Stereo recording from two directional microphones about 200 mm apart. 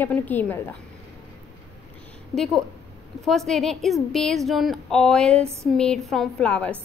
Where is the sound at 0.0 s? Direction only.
10° left (ahead or behind).